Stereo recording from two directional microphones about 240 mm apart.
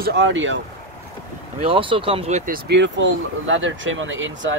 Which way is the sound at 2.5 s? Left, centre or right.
Right.